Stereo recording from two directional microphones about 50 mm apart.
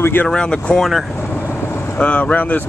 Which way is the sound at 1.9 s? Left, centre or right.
Left.